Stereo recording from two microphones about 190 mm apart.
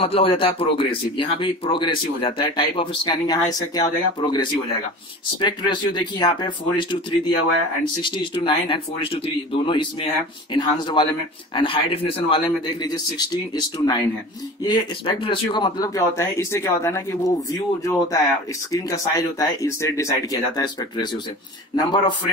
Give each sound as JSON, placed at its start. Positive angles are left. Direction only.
{"t": 0.0, "sound": "a man's voice", "side_deg": 30}